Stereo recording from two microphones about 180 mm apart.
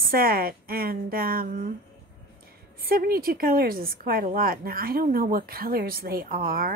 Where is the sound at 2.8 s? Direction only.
60° right (ahead or behind).